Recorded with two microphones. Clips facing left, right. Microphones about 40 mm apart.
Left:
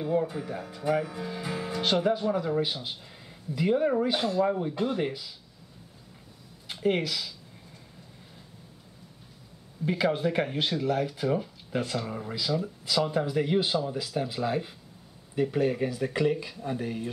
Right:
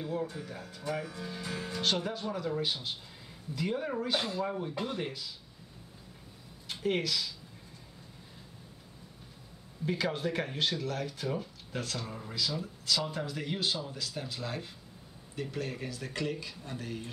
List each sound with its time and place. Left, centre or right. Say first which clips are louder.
0.0 s speech: left 8 dB; centre
6.7 s speech: left 4 dB; centre
9.8 s speech: left 6 dB; centre